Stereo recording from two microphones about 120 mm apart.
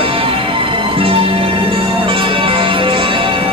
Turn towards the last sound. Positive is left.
turn(degrees=-45)  # may be behind; listen again after turning